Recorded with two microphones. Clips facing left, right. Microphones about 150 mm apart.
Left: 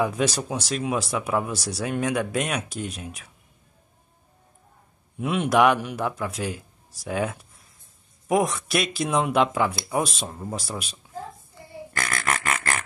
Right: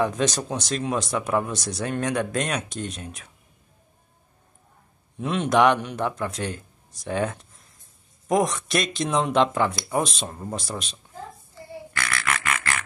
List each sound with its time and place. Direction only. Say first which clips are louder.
0.0 s speech: even; 10° left (ahead or behind)
5.2 s speech: even; 5° left (ahead or behind)
11.9 s a sound: left 1 dB; 45° left (ahead or behind)